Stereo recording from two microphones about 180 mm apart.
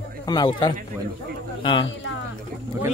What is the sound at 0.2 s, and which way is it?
A man's voice, 25° left (ahead or behind).